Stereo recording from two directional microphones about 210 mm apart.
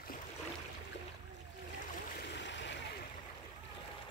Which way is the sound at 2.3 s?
60° left (ahead or behind).